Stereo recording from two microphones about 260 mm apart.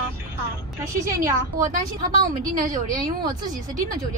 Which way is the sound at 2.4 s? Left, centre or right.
Right.